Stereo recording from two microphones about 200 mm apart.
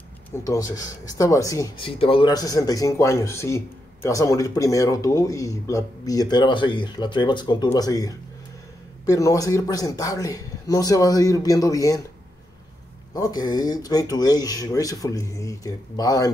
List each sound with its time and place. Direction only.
0.3 s speech: 15° left (ahead or behind)
13.1 s speech: 20° left (ahead or behind)